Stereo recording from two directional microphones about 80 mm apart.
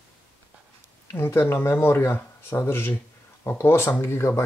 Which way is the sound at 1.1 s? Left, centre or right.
Left.